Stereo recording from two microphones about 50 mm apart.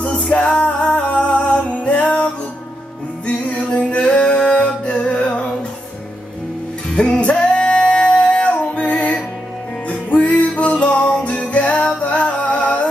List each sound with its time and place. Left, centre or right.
0.0 s music: left
6.9 s music: left